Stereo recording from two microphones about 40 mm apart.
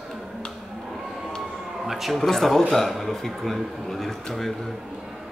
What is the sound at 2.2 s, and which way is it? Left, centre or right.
A man's voice, centre.